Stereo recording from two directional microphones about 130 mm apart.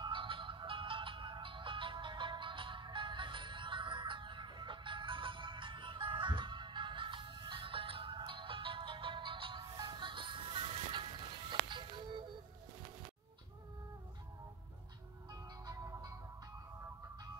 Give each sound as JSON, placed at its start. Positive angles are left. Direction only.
{"t": 0.0, "sound": "music", "side_deg": -40}
{"t": 15.6, "sound": "music", "side_deg": -30}